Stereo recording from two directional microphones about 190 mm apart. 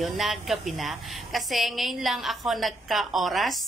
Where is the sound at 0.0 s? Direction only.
Centre (ahead or behind).